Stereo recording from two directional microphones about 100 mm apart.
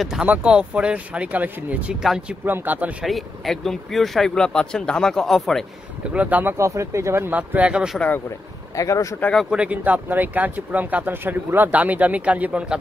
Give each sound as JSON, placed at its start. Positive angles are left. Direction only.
{"t": 0.0, "sound": "speech", "side_deg": -10}
{"t": 2.4, "sound": "speech", "side_deg": -20}
{"t": 3.1, "sound": "speech", "side_deg": 0}
{"t": 6.1, "sound": "speech", "side_deg": -15}
{"t": 6.5, "sound": "speech", "side_deg": -30}
{"t": 8.7, "sound": "speech", "side_deg": 35}
{"t": 9.2, "sound": "speech", "side_deg": 5}
{"t": 9.5, "sound": "speech", "side_deg": -10}